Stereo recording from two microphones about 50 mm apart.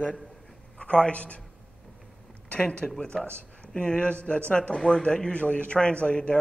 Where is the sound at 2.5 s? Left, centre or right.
Left.